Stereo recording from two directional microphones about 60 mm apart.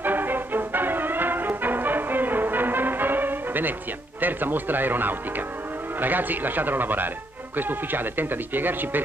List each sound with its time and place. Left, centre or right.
0.0 s music: right
4.2 s speech: right